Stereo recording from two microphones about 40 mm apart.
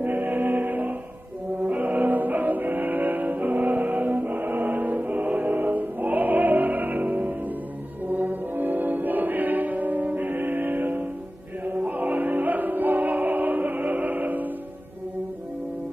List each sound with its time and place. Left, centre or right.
0.0 s music: right
8.1 s brass instrument: right
11.6 s music: right